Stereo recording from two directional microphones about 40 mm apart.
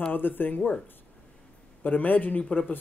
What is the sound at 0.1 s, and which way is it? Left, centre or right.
Speech, left.